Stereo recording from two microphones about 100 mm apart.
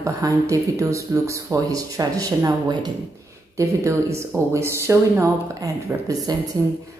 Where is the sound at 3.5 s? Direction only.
30° right (ahead or behind).